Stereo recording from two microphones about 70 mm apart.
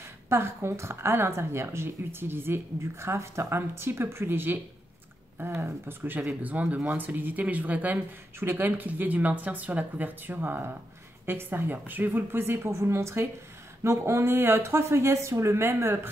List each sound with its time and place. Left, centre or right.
0.3 s speech: right